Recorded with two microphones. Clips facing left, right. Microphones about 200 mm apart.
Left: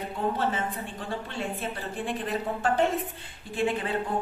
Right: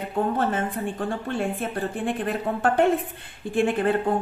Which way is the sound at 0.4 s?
50° right (ahead or behind).